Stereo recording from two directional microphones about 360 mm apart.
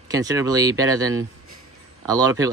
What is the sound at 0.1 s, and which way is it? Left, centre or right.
Speech, centre.